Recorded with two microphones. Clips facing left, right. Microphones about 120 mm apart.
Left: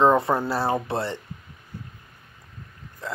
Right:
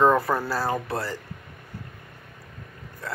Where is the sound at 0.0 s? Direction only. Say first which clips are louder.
Left 1 dB; 25° left (ahead or behind).